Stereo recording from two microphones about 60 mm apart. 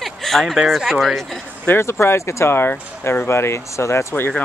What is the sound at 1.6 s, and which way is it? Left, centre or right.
Speech, left.